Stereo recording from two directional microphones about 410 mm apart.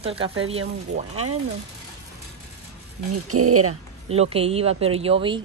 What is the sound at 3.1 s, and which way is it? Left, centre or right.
Speech, right.